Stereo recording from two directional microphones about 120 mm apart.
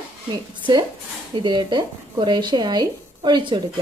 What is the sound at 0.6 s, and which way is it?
Speech, 40° right (ahead or behind).